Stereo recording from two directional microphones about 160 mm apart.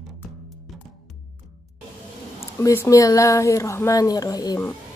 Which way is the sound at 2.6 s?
15° left (ahead or behind).